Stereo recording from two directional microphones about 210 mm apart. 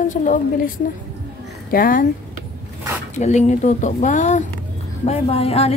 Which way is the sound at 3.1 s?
35° left (ahead or behind).